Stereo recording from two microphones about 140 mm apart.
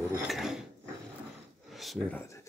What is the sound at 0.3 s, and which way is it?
Mechanisms, 5° right (ahead or behind).